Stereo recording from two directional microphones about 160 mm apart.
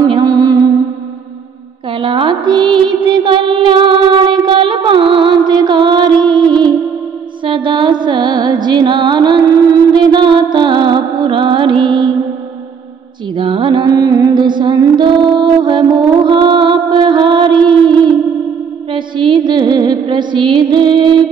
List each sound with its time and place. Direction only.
0.0 s mantra: 25° right (ahead or behind)
1.9 s music: 35° right (ahead or behind)
13.3 s music: 30° right (ahead or behind)